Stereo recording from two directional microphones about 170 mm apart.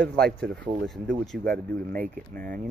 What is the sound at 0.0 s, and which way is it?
Speech, 75° right (ahead or behind).